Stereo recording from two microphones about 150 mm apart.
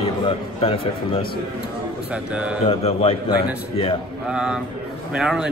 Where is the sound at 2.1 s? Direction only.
10° right (ahead or behind).